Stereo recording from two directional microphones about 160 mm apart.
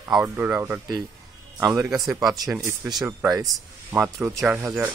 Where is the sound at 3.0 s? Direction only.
20° right (ahead or behind).